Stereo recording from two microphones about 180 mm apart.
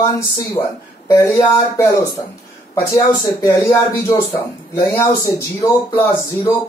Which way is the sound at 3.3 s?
15° left (ahead or behind).